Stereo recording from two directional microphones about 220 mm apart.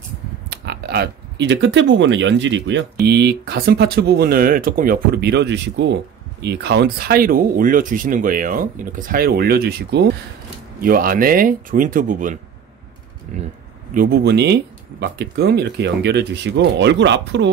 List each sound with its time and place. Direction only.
0.5 s speech: 45° right (ahead or behind)
13.9 s speech: 45° right (ahead or behind)